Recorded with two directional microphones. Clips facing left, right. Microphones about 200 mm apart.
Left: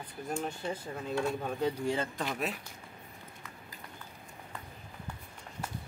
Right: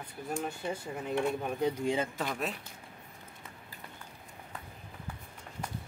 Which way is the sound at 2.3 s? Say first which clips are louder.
Even; centre (ahead or behind).